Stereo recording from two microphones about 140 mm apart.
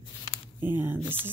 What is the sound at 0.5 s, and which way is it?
Speech, 15° right (ahead or behind).